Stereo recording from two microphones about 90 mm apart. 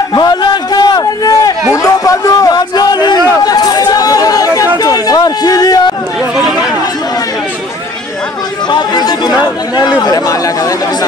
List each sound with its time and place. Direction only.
0.1 s a sound: 50° left (ahead or behind)
8.7 s chatter: 50° left (ahead or behind)
9.8 s speech: 50° left (ahead or behind)